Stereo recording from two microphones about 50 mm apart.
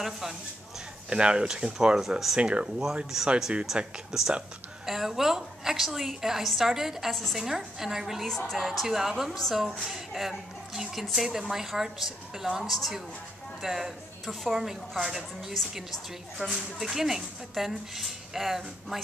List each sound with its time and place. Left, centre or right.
1.1 s speech: centre
2.0 s a woman's voice: centre
2.4 s a woman's voice: centre
8.3 s a woman's voice: centre